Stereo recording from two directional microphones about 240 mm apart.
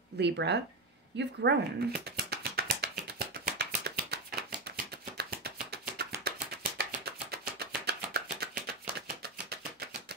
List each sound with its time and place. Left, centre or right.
0.2 s speech: right
1.1 s a sound: right
5.1 s chopping: right
6.2 s music: right
7.2 s chopping: right